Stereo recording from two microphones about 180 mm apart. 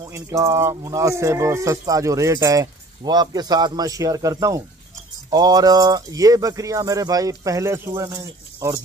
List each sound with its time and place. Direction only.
0.0 s speech: 15° right (ahead or behind)